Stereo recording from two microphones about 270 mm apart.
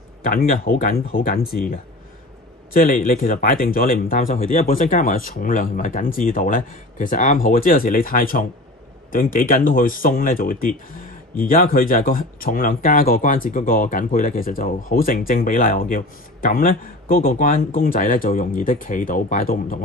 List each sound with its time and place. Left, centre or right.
0.2 s speech: left
2.7 s speech: left